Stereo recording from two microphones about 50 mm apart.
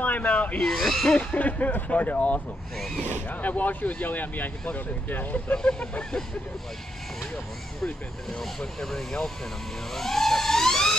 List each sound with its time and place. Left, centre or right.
0.0 s speech: left
0.6 s speech: centre
1.1 s speech: left
5.6 s speech: left
7.8 s speech: centre
9.9 s a sound: centre